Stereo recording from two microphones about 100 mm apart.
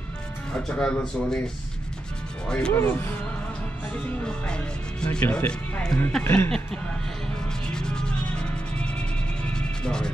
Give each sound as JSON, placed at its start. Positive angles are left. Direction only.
{"t": 0.5, "sound": "speech", "side_deg": 10}
{"t": 2.7, "sound": "speech", "side_deg": 20}
{"t": 3.9, "sound": "speech", "side_deg": 10}
{"t": 6.2, "sound": "speech", "side_deg": 25}
{"t": 7.7, "sound": "music", "side_deg": 5}